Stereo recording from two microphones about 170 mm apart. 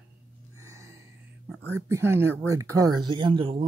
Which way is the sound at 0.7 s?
15° right (ahead or behind).